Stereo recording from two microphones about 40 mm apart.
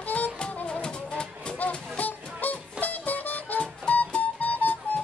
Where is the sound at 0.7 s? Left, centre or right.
Left.